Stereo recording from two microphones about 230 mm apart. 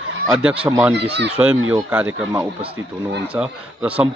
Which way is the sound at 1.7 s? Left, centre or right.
Centre.